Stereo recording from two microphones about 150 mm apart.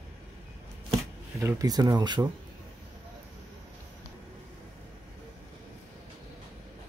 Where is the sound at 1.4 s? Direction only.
20° right (ahead or behind).